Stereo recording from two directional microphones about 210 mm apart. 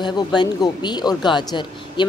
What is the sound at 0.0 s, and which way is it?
A woman's voice, 20° left (ahead or behind).